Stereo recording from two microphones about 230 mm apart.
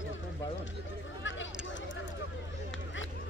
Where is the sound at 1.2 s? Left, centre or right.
Left.